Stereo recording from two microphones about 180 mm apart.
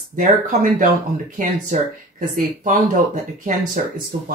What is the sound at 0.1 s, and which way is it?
Speech, 45° right (ahead or behind).